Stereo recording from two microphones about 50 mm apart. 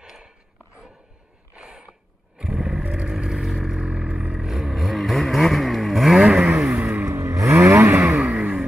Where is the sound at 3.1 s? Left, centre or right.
Centre.